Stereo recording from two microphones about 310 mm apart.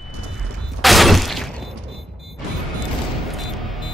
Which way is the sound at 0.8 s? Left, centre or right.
Centre.